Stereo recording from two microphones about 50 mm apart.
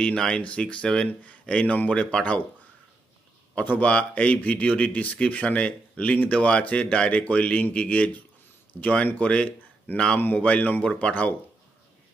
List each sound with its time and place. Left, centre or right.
0.0 s speech: centre
3.8 s speech: left
10.8 s speech: left